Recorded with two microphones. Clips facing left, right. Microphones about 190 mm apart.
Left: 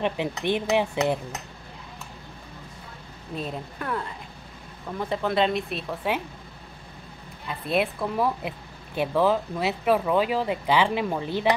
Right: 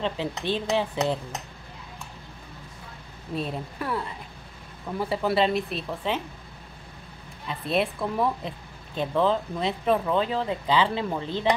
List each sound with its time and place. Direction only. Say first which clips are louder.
0.0 s speech: left 2 dB; 15° left (ahead or behind)
3.3 s speech: right 2 dB; centre (ahead or behind)
5.1 s speech: even; 5° right (ahead or behind)
7.6 s speech: left 1 dB; centre (ahead or behind)